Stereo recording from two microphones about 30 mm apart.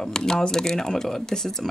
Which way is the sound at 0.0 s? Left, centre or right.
Centre.